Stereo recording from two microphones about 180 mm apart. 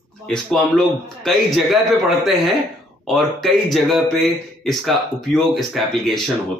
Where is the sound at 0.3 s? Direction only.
5° left (ahead or behind).